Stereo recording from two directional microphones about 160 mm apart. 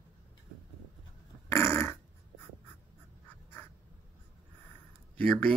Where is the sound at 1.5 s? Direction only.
15° left (ahead or behind).